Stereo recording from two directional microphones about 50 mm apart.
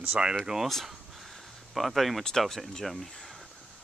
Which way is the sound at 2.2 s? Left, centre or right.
Centre.